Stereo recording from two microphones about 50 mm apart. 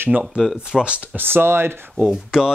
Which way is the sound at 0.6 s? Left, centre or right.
Right.